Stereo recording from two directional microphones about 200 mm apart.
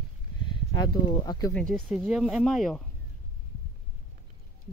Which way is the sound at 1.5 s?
5° left (ahead or behind).